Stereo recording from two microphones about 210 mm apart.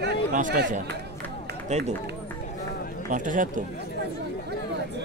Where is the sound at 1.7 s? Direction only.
35° right (ahead or behind).